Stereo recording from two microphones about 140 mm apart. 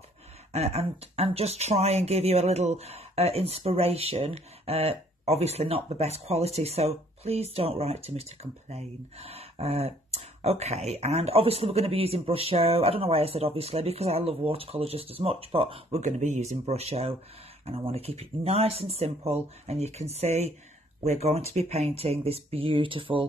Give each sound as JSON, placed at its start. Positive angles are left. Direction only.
{"t": 0.5, "sound": "speech", "side_deg": -50}
{"t": 16.0, "sound": "speech", "side_deg": -60}